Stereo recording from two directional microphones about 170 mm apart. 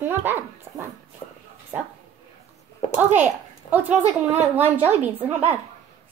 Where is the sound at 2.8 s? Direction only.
40° left (ahead or behind).